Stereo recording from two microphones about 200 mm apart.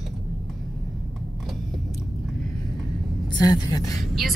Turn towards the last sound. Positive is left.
turn(degrees=20)  # may be behind; listen again after turning